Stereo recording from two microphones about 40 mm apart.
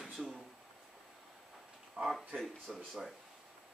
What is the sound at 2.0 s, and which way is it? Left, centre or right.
Speech, right.